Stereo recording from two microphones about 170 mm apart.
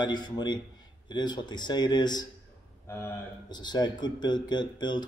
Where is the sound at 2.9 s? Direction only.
15° left (ahead or behind).